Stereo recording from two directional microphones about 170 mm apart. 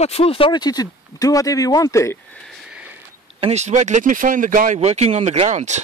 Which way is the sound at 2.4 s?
5° right (ahead or behind).